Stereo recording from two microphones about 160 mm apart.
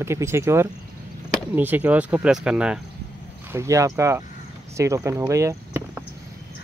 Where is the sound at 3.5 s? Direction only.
20° right (ahead or behind).